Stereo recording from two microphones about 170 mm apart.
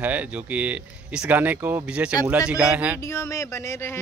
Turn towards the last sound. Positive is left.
turn(degrees=15)  # may be behind; listen again after turning